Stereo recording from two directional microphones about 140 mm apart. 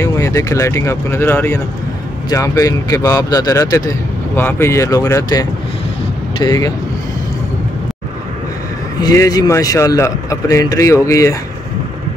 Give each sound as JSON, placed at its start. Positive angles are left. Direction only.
{"t": 0.0, "sound": "a man's voice", "side_deg": 20}
{"t": 9.0, "sound": "a man's voice", "side_deg": 25}